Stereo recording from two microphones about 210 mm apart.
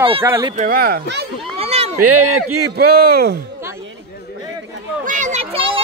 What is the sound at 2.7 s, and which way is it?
Speech, 45° right (ahead or behind).